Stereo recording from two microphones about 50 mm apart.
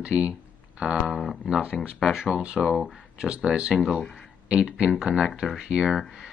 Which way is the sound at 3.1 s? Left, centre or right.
Centre.